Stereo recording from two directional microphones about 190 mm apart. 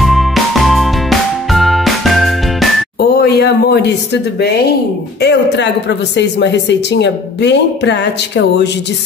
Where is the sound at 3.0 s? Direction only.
55° left (ahead or behind).